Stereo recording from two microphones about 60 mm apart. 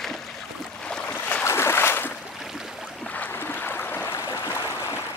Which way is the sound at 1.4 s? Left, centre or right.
Left.